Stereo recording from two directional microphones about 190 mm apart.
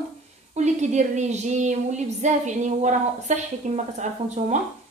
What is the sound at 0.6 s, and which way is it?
A woman's voice, 40° right (ahead or behind).